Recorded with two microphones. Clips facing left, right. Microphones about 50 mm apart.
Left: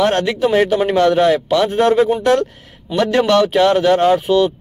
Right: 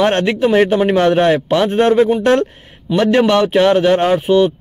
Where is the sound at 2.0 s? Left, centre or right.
Centre.